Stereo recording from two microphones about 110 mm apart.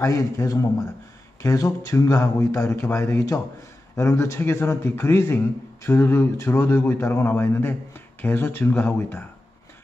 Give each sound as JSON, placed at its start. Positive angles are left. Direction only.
{"t": 0.0, "sound": "a man's voice", "side_deg": 30}